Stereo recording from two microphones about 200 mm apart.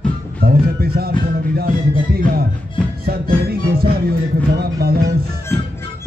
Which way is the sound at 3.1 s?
50° right (ahead or behind).